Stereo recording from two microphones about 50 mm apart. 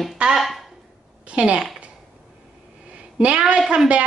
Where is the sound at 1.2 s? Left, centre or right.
Right.